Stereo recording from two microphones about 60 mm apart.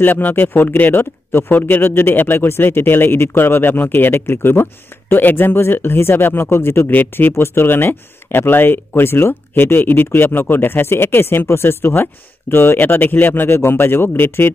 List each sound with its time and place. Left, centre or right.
0.0 s speech: left